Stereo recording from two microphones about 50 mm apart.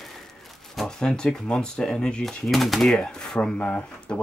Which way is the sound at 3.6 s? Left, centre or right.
Left.